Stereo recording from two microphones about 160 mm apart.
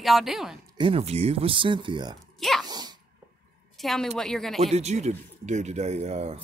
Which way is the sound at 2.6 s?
25° right (ahead or behind).